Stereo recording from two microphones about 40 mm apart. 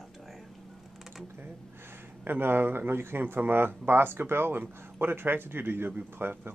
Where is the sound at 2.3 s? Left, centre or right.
Right.